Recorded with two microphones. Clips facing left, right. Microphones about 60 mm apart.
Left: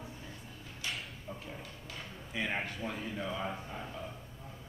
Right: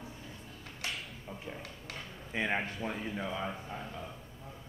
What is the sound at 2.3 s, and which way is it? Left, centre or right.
Speech, right.